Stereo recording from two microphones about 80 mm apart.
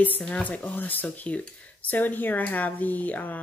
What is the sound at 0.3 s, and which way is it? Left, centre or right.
Speech, centre.